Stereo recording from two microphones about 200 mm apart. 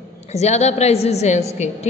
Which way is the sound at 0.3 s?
35° left (ahead or behind).